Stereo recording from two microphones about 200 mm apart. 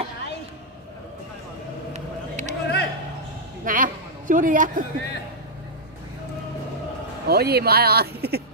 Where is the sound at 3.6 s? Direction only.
40° right (ahead or behind).